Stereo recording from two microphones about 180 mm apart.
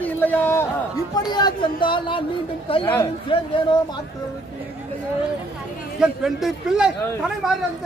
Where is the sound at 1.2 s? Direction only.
25° left (ahead or behind).